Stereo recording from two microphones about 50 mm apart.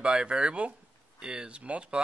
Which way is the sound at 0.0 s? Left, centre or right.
Centre.